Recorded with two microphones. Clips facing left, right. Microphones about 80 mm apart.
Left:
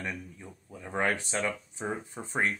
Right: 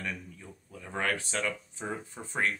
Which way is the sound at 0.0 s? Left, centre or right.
Left.